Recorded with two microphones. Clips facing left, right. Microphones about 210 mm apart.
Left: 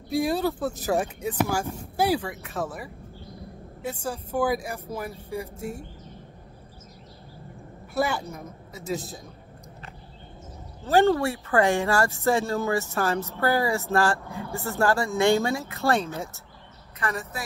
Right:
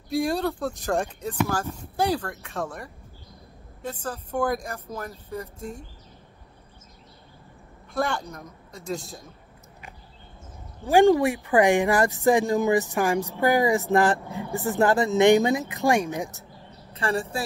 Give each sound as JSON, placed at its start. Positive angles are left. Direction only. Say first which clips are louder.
{"t": 0.1, "sound": "a woman's voice", "louder": "even", "side_deg": 0}
{"t": 7.9, "sound": "speech", "louder": "left 1 dB", "side_deg": 5}
{"t": 10.8, "sound": "speech", "louder": "right 3 dB", "side_deg": -15}
{"t": 17.0, "sound": "a woman's voice", "louder": "right 5 dB", "side_deg": -30}